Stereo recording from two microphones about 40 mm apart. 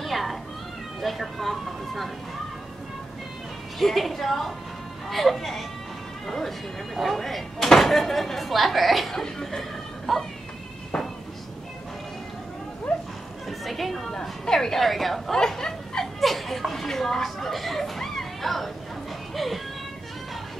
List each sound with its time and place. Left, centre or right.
0.0 s cat: centre
1.0 s speech: centre
3.8 s speech: centre
9.1 s speech: centre
9.6 s a sound: centre
12.9 s a sound: left
13.5 s speech: centre
15.3 s a sound: centre
16.2 s speech: centre